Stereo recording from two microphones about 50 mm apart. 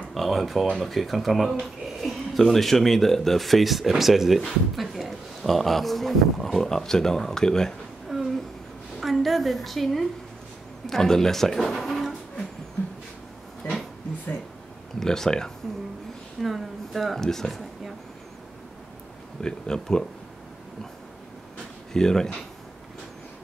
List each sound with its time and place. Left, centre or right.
0.1 s speech: centre
8.1 s a sound: centre
9.0 s a woman's voice: centre
15.0 s speech: centre
16.3 s a sound: centre
17.2 s speech: centre
19.4 s speech: centre
21.9 s speech: centre